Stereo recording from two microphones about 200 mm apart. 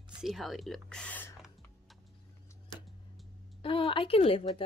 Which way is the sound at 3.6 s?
25° left (ahead or behind).